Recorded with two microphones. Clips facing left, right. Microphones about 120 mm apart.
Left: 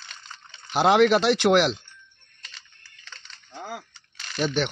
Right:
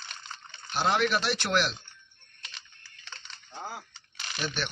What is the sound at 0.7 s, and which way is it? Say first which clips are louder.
Speech: left 9 dB; 90° left.